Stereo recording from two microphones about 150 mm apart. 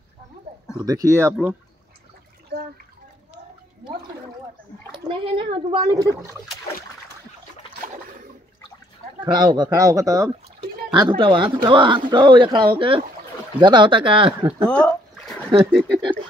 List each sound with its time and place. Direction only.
0.7 s speech: 25° right (ahead or behind)
4.9 s speech: 35° right (ahead or behind)
9.2 s speech: 30° right (ahead or behind)
14.7 s a sound: 5° left (ahead or behind)